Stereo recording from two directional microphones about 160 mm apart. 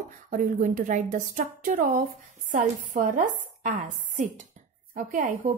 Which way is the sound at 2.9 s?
50° right (ahead or behind).